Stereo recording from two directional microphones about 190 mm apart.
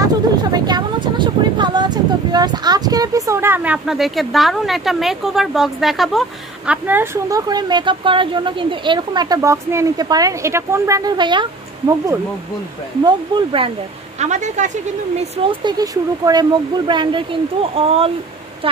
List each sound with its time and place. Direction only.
0.0 s speech: 20° right (ahead or behind)
13.0 s speech: 25° right (ahead or behind)
14.2 s a woman's voice: 40° right (ahead or behind)